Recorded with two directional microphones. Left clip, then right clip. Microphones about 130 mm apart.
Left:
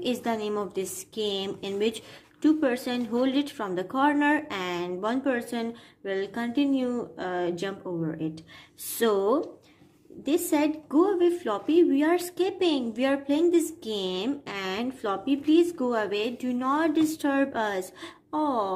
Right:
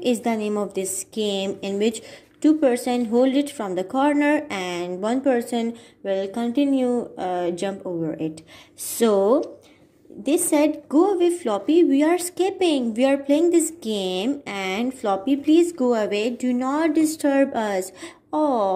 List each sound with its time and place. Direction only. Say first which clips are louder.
0.0 s a woman's voice: right 6 dB; 20° right (ahead or behind)